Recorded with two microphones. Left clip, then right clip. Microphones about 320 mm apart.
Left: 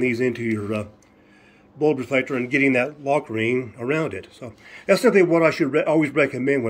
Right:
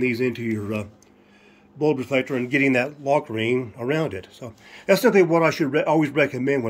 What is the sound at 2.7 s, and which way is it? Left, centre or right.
Speech, right.